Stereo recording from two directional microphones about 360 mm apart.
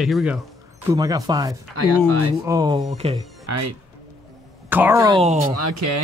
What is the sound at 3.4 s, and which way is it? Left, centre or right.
Speech, right.